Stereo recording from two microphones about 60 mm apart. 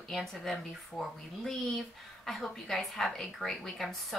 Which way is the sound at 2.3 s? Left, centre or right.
Centre.